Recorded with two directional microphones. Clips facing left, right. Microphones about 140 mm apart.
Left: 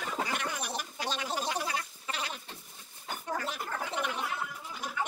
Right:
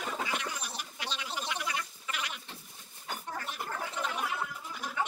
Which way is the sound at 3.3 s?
90° left.